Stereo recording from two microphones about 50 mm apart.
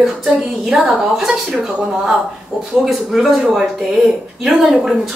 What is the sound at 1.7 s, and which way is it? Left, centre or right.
A man's voice, centre.